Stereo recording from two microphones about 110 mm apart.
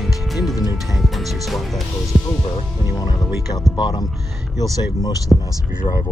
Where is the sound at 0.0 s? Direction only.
Centre (ahead or behind).